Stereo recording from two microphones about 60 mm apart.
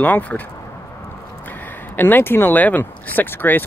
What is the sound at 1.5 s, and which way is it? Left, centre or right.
Speech, left.